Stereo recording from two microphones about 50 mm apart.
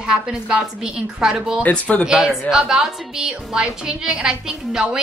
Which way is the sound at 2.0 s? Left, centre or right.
Centre.